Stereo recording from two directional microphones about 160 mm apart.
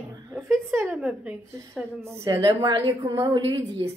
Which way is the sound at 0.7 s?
10° right (ahead or behind).